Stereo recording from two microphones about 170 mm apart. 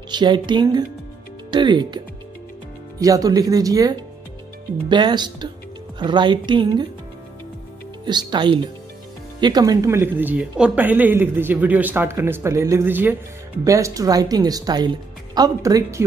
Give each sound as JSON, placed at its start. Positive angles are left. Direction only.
{"t": 0.1, "sound": "speech", "side_deg": -25}
{"t": 8.0, "sound": "speech", "side_deg": -25}